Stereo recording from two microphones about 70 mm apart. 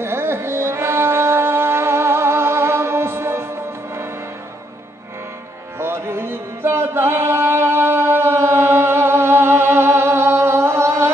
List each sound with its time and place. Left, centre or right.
0.0 s music: right
5.8 s music: right